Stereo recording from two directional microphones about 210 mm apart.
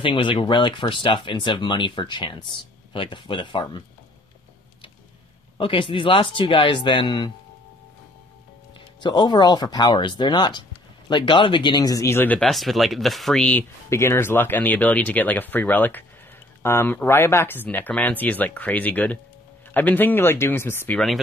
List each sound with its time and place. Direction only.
0.0 s speech: 25° left (ahead or behind)
5.6 s speech: 25° left (ahead or behind)
8.7 s speech: 20° left (ahead or behind); by 21.2 s 5° left (ahead or behind)